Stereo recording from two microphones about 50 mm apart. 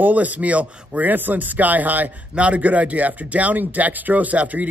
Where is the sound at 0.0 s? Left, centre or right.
Right.